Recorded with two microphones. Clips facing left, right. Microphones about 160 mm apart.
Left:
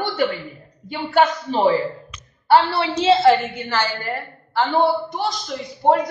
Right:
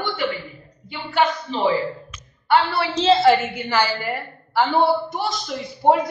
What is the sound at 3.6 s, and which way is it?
A woman's voice, 10° right (ahead or behind).